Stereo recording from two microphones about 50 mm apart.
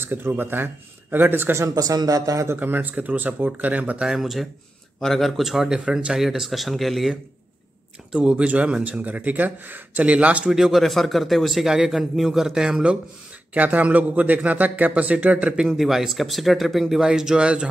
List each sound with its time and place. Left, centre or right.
0.0 s a man's voice: right
4.2 s a man's voice: centre
5.9 s speech: centre
6.1 s a man's voice: centre
8.1 s speech: right
10.4 s speech: centre
10.8 s a man's voice: centre
13.5 s a man's voice: right
15.5 s speech: centre
15.8 s a man's voice: centre